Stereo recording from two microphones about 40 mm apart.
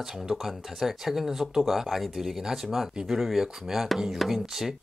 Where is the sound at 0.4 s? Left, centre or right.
Centre.